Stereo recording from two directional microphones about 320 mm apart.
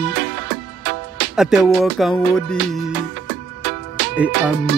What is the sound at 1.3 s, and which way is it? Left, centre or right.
Music, centre.